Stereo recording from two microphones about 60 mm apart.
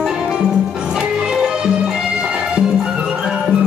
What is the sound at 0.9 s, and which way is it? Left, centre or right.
Music, centre.